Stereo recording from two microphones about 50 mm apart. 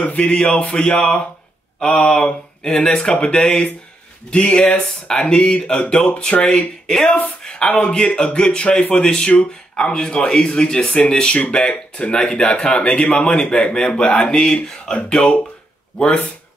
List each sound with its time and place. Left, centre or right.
0.0 s speech: left